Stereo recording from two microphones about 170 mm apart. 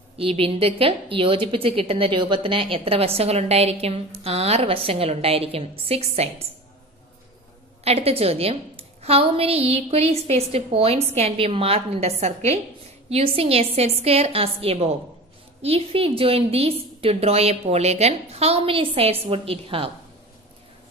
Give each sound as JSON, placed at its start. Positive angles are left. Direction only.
{"t": 0.2, "sound": "a woman's voice", "side_deg": -35}
{"t": 7.8, "sound": "a woman's voice", "side_deg": -35}